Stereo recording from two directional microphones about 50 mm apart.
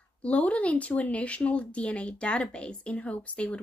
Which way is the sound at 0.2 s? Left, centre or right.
Left.